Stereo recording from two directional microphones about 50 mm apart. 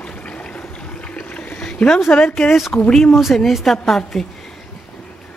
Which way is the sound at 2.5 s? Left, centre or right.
Centre.